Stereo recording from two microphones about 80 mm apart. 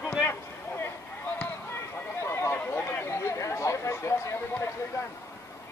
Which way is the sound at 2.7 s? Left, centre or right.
Left.